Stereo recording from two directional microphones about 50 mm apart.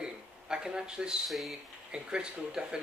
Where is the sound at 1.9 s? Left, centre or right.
Centre.